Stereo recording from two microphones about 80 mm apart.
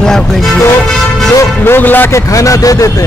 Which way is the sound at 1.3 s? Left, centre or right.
Left.